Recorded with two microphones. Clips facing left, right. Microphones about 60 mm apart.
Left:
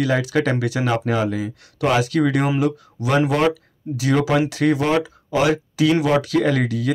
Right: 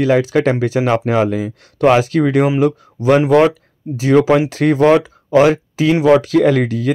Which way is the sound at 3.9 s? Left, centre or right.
Right.